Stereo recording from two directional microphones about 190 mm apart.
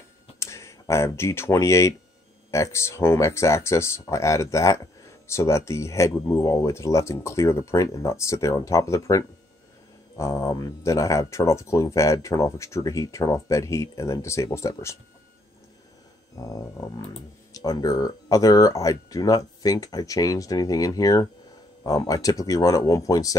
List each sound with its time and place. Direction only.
0.4 s speech: 15° left (ahead or behind)
16.3 s speech: 20° left (ahead or behind)